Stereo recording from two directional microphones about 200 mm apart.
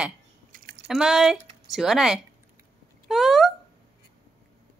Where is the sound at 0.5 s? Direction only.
50° right (ahead or behind).